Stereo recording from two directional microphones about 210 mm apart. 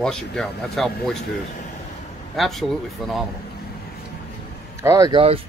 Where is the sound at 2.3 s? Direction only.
Centre (ahead or behind).